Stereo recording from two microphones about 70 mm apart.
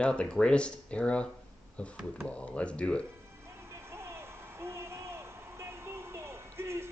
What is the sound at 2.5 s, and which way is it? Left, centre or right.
Speech, centre.